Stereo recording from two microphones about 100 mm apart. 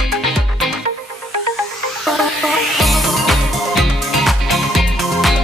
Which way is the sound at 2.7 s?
Centre (ahead or behind).